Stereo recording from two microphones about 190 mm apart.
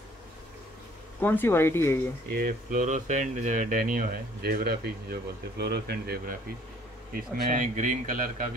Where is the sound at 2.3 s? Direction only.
45° right (ahead or behind).